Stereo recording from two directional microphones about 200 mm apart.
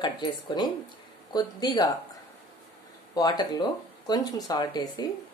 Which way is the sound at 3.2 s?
20° left (ahead or behind).